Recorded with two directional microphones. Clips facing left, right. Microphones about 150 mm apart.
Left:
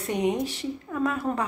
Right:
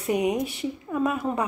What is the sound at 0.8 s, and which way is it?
Speech, 15° right (ahead or behind).